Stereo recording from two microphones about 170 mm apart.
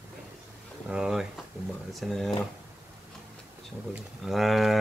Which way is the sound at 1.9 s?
Centre (ahead or behind).